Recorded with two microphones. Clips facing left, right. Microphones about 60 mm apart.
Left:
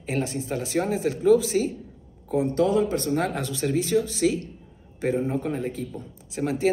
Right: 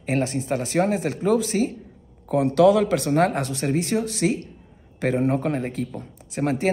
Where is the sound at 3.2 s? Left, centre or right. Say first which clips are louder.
Right 6 dB; right.